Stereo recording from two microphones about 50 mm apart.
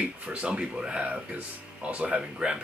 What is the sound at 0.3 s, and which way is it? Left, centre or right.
Speech, right.